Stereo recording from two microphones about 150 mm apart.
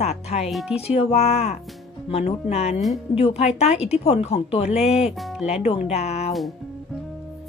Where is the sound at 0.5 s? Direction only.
5° right (ahead or behind).